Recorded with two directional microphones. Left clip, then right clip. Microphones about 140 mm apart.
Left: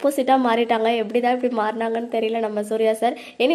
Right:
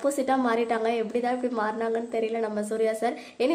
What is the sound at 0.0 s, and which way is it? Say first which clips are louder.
A woman's voice: left 7 dB; 30° left (ahead or behind).